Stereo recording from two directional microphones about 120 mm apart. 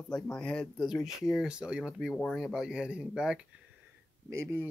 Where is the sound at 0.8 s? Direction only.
Centre (ahead or behind).